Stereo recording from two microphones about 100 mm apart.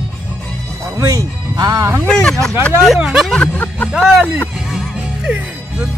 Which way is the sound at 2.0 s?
10° left (ahead or behind).